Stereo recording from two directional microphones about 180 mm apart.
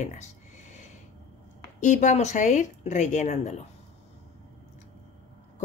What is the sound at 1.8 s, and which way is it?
A woman's voice, 45° left (ahead or behind).